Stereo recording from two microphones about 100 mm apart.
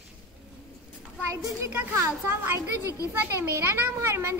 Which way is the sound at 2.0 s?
25° right (ahead or behind).